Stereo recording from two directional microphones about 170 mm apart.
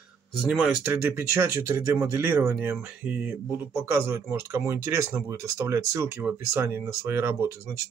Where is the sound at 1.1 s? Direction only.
15° right (ahead or behind).